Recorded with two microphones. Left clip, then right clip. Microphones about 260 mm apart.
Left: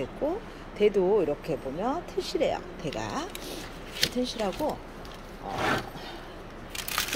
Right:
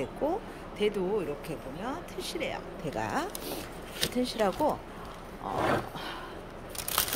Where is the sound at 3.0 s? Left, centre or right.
Centre.